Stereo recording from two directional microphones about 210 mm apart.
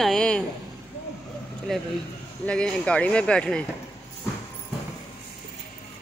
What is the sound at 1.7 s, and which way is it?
Speech, centre (ahead or behind).